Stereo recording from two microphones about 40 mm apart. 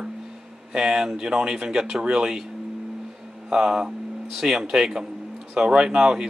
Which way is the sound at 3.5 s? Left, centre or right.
Centre.